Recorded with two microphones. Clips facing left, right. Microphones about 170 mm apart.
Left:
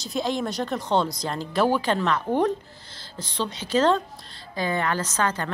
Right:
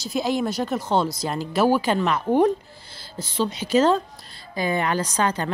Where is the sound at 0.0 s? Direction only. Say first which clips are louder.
Right 3 dB; 5° right (ahead or behind).